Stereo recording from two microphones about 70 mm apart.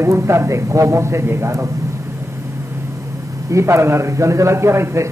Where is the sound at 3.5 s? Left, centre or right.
Right.